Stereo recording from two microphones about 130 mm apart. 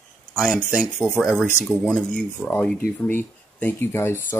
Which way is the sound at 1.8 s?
5° left (ahead or behind).